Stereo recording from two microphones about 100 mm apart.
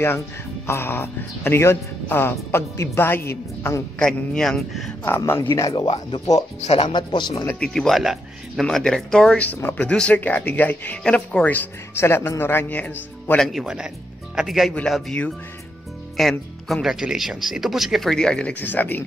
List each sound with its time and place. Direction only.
0.7 s speech: 25° left (ahead or behind)
4.0 s speech: 5° left (ahead or behind)
5.0 s speech: 25° left (ahead or behind)
6.3 s speech: 90° left
6.9 s a man's voice: 50° left (ahead or behind)
7.6 s speech: 5° left (ahead or behind)
13.4 s speech: centre (ahead or behind)
16.2 s speech: centre (ahead or behind); by 19.0 s 20° left (ahead or behind)